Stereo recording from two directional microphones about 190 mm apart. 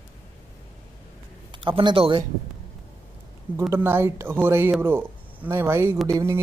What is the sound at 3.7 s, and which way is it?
Speech, 10° right (ahead or behind).